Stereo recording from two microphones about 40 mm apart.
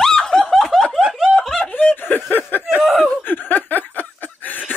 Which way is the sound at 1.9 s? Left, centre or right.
Left.